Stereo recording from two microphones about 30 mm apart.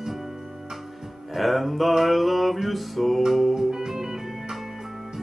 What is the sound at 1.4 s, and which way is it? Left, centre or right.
Mantra, centre.